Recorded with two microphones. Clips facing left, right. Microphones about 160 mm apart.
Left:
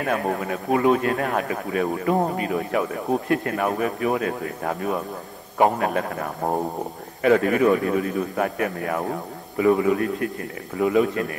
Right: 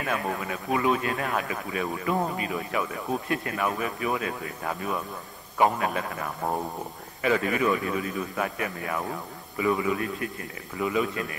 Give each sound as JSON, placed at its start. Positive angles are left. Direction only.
{"t": 0.0, "sound": "a man's voice", "side_deg": 50}